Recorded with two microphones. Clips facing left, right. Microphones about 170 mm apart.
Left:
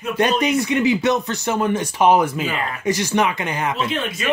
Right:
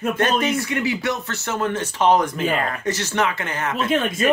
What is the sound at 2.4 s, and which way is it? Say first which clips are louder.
Speech: right 3 dB; 50° right (ahead or behind).